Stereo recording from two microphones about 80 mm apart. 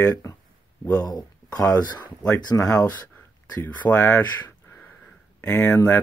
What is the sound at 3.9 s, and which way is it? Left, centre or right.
Speech, left.